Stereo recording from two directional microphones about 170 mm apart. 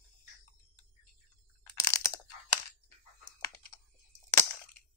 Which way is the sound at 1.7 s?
20° left (ahead or behind).